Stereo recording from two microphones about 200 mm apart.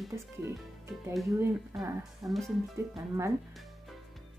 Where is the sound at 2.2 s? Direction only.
20° right (ahead or behind).